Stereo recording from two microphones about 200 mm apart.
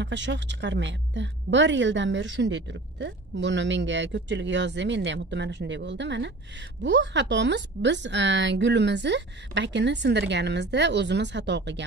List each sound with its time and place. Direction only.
0.0 s a woman's voice: 65° right (ahead or behind)